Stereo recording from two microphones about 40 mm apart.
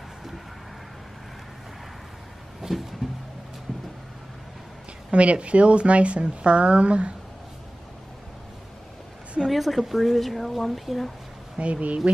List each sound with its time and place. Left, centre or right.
2.6 s a sound: centre
5.1 s a woman's voice: right
9.5 s speech: centre
11.5 s speech: right